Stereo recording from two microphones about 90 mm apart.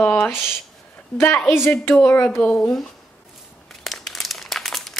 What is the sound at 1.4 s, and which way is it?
Speech, centre (ahead or behind).